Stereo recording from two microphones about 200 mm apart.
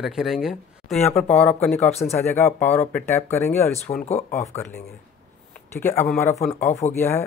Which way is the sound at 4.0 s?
35° left (ahead or behind).